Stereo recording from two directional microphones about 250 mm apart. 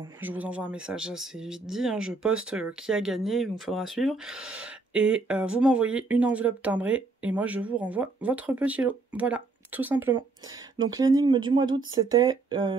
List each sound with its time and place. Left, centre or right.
0.2 s speech: centre